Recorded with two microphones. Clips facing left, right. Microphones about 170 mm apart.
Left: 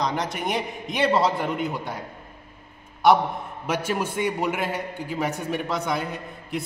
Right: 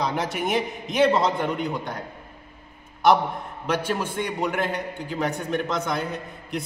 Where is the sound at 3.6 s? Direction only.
10° left (ahead or behind).